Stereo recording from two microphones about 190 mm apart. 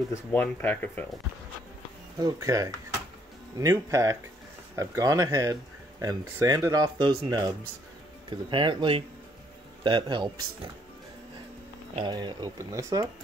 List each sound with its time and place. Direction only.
0.1 s speech: 10° left (ahead or behind)
2.1 s speech: 20° right (ahead or behind)
11.9 s speech: 20° right (ahead or behind)